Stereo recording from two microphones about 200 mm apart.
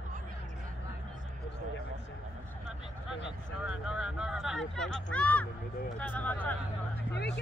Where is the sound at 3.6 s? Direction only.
5° right (ahead or behind).